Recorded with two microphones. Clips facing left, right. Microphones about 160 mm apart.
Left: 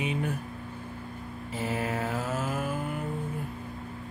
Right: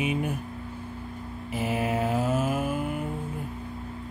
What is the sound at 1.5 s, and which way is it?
Mantra, 15° right (ahead or behind).